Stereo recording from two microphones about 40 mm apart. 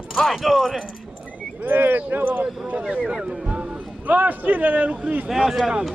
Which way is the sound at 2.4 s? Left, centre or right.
Right.